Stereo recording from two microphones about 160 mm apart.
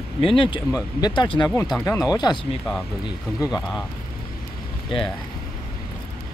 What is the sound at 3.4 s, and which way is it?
Speech, 5° right (ahead or behind).